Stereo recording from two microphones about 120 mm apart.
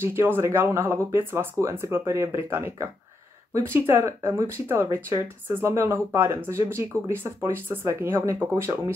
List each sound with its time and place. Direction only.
0.0 s speech: 20° right (ahead or behind)